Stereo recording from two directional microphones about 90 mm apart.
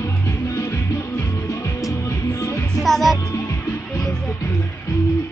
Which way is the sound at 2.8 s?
Centre (ahead or behind).